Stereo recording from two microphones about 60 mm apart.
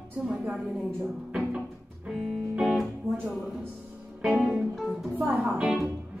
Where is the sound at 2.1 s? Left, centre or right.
Centre.